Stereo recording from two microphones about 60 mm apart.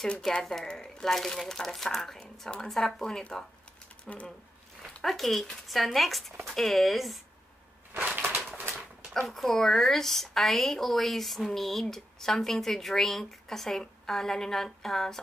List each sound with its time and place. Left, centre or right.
0.0 s a woman's voice: centre
8.5 s bird: right
9.3 s a woman's voice: centre